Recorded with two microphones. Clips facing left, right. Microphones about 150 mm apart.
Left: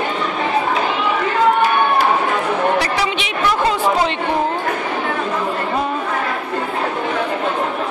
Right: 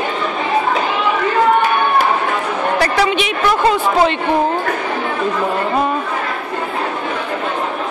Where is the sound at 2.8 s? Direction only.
55° right (ahead or behind).